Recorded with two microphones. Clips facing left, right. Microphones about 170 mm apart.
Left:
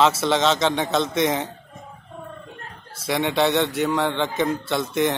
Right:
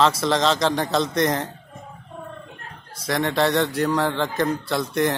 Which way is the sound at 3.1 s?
Centre (ahead or behind).